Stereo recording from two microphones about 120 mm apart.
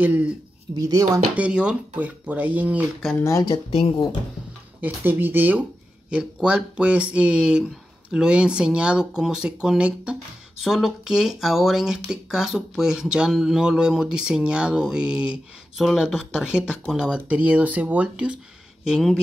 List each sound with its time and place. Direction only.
0.0 s speech: 15° right (ahead or behind)
0.7 s speech: 30° right (ahead or behind)
1.3 s speech: 10° right (ahead or behind)
3.2 s speech: 25° left (ahead or behind)
3.4 s speech: 50° left (ahead or behind)
4.8 s speech: 15° right (ahead or behind)